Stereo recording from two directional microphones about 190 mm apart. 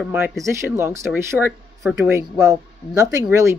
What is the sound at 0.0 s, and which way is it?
Speech, 5° right (ahead or behind).